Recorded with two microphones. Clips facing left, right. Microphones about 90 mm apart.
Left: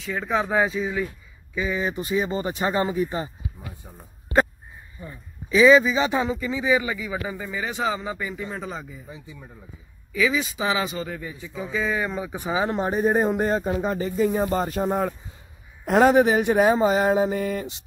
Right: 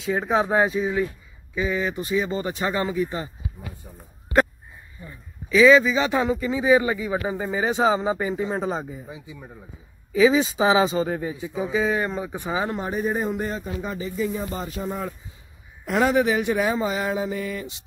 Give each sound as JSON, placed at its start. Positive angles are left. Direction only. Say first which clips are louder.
{"t": 0.0, "sound": "a man's voice", "louder": "right 3 dB", "side_deg": -20}
{"t": 1.9, "sound": "speech", "louder": "even", "side_deg": 25}
{"t": 5.5, "sound": "speech", "louder": "even", "side_deg": 10}
{"t": 6.7, "sound": "a man's voice", "louder": "right 5 dB", "side_deg": -30}
{"t": 9.1, "sound": "speech", "louder": "right 2 dB", "side_deg": -10}
{"t": 10.1, "sound": "a man's voice", "louder": "right 6 dB", "side_deg": -25}
{"t": 11.5, "sound": "speech", "louder": "right 4 dB", "side_deg": -15}
{"t": 11.8, "sound": "speech", "louder": "left 2 dB", "side_deg": 0}
{"t": 12.4, "sound": "speech", "louder": "left 3 dB", "side_deg": 15}
{"t": 12.7, "sound": "speech", "louder": "left 4 dB", "side_deg": 35}